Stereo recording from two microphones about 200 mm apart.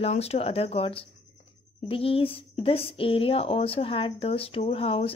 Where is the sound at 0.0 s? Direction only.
30° left (ahead or behind).